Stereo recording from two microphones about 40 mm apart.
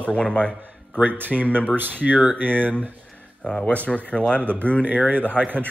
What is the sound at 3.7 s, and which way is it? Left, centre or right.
A man's voice, left.